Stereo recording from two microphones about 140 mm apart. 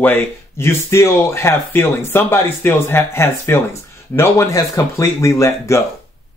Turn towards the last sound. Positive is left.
turn(degrees=20)  # may be behind; listen again after turning